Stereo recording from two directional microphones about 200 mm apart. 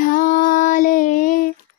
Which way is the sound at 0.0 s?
40° left (ahead or behind).